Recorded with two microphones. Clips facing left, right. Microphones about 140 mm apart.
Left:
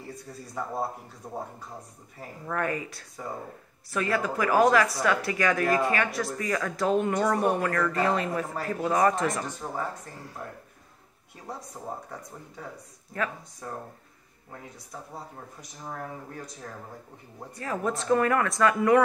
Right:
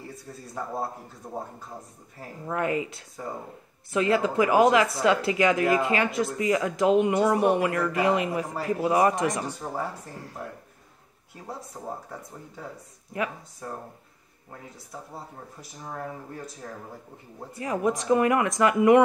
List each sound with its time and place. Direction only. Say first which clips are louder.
2.4 s speech: right 3 dB; 20° right (ahead or behind)
11.5 s speech: right 1 dB; centre (ahead or behind)
17.6 s speech: right 4 dB; 15° right (ahead or behind)